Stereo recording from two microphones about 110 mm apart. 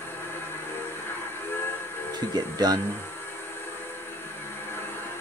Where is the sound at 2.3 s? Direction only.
40° right (ahead or behind).